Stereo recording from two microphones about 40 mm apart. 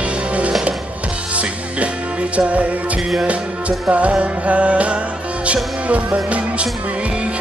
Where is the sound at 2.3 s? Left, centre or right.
Right.